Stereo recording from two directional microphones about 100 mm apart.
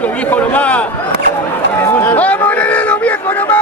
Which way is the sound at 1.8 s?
20° left (ahead or behind).